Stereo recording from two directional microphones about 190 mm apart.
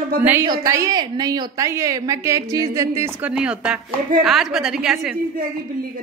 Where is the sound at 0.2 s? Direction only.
10° right (ahead or behind).